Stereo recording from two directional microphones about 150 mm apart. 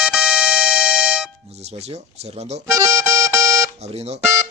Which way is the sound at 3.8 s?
45° right (ahead or behind).